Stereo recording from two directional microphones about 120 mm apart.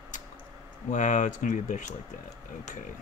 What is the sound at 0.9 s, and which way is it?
Speech, 90° left.